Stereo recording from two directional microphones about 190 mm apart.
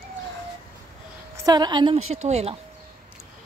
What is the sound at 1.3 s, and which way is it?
Speech, 20° right (ahead or behind).